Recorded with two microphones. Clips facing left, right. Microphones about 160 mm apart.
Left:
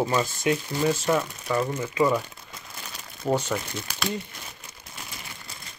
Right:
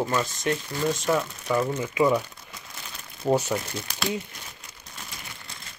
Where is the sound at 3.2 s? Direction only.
10° right (ahead or behind).